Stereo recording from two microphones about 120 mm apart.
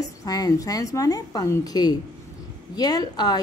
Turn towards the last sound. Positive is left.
turn(degrees=35)  # may be behind; listen again after turning